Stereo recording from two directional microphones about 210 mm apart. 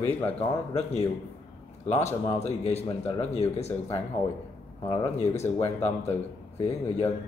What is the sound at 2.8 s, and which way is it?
Speech, 15° left (ahead or behind).